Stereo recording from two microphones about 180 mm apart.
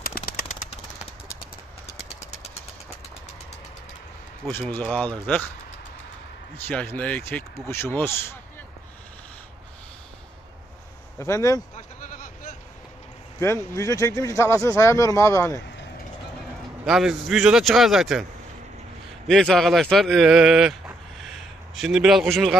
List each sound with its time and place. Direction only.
0.0 s vehicle: 55° left (ahead or behind)
4.5 s speech: 10° left (ahead or behind)
6.7 s speech: 5° left (ahead or behind)
11.1 s speech: 15° left (ahead or behind)
11.7 s a sound: 45° left (ahead or behind)
13.4 s speech: 15° left (ahead or behind)
16.8 s speech: centre (ahead or behind)
19.2 s speech: centre (ahead or behind)
21.7 s speech: centre (ahead or behind)